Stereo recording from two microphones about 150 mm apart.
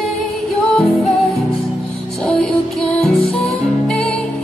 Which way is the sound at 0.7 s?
Centre (ahead or behind).